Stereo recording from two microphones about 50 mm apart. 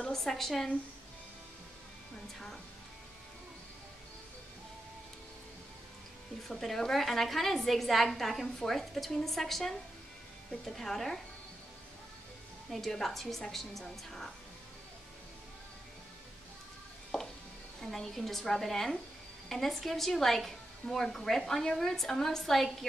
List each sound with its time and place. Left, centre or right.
0.0 s a woman's voice: centre
6.5 s a woman's voice: centre
10.8 s a woman's voice: centre
12.7 s a woman's voice: centre
17.1 s music: centre
17.7 s a woman's voice: centre